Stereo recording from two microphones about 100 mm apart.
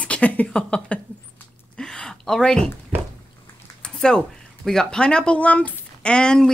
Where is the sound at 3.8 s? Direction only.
5° left (ahead or behind).